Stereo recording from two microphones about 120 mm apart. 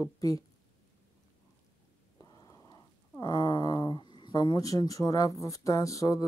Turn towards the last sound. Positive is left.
turn(degrees=30)  # may be behind; listen again after turning